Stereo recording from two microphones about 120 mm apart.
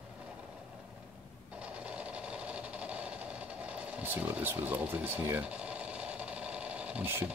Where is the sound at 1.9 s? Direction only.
10° right (ahead or behind).